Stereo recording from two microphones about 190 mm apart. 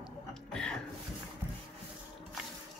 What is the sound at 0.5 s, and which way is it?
Music, 5° left (ahead or behind).